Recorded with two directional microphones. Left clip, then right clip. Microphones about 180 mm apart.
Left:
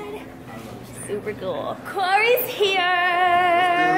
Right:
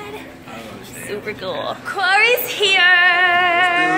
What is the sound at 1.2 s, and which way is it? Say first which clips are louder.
A woman's voice: right 4 dB; 10° left (ahead or behind).